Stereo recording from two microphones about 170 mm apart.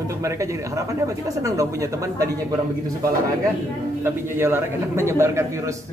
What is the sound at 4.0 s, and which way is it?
A man's voice, 15° right (ahead or behind).